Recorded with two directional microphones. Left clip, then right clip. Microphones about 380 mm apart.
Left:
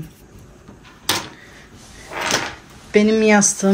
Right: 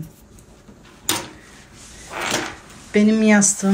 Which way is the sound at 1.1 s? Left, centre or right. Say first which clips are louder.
Left 3 dB; left.